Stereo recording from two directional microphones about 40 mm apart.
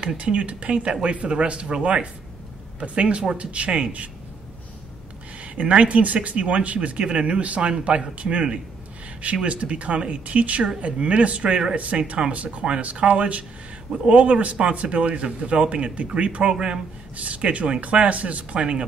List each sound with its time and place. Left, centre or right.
0.2 s speech: right
5.4 s speech: right
16.5 s speech: right
17.2 s speech: right